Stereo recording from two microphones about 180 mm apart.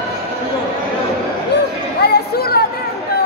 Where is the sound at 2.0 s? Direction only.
65° left (ahead or behind).